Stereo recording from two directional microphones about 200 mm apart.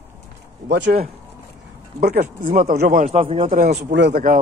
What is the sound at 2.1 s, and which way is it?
Speech, 35° right (ahead or behind).